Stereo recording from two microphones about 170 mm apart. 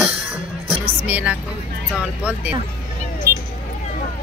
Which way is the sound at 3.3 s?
65° right (ahead or behind).